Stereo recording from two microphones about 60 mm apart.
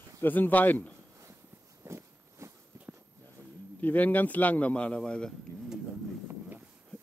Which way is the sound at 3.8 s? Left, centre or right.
Left.